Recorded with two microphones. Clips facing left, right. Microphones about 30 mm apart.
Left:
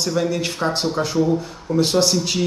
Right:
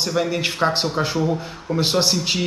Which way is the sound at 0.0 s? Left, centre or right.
Right.